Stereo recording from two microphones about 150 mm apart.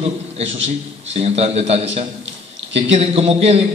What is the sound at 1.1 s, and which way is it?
A man's voice, 40° right (ahead or behind).